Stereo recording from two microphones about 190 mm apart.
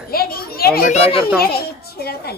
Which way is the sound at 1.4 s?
55° left (ahead or behind).